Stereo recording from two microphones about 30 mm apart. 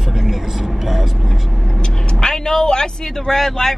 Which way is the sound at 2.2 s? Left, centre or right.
Centre.